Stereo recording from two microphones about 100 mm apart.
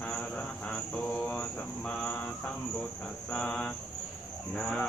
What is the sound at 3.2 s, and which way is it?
Mantra, 10° left (ahead or behind).